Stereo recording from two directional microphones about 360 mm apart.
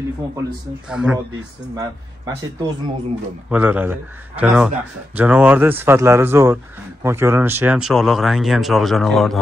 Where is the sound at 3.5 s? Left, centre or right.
Centre.